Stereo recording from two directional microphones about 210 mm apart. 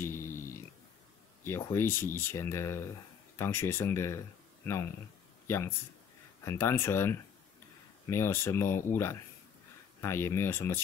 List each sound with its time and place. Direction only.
0.0 s a sound: 10° left (ahead or behind)
1.4 s speech: 10° left (ahead or behind)
6.4 s speech: 10° left (ahead or behind)